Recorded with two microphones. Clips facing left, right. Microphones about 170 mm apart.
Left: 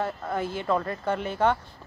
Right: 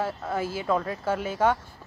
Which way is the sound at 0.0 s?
5° right (ahead or behind).